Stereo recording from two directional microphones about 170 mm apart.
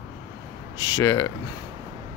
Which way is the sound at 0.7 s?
20° left (ahead or behind).